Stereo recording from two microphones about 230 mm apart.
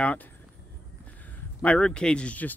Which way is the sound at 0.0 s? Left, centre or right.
Centre.